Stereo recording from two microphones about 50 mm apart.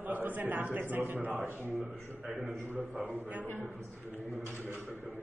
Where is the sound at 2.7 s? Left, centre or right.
Right.